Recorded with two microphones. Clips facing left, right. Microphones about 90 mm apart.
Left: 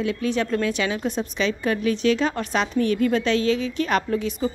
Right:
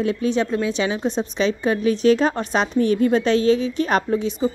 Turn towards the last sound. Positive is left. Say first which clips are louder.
# right 3 dB
turn(degrees=-30)  # may be behind; listen again after turning